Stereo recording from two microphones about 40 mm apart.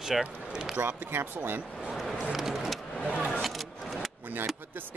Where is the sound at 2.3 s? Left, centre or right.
Centre.